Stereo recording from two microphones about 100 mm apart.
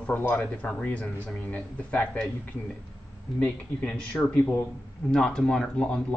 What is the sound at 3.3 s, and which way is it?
Speech, 10° left (ahead or behind).